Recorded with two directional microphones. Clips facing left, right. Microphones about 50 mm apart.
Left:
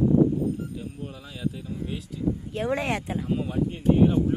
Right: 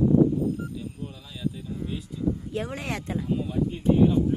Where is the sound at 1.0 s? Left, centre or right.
Left.